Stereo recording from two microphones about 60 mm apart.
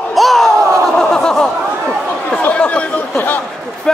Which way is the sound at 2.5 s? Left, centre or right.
Left.